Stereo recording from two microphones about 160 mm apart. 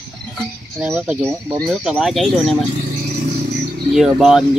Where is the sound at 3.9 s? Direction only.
5° right (ahead or behind).